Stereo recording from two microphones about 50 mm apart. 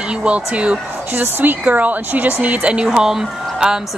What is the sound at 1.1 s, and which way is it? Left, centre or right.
A woman's voice, right.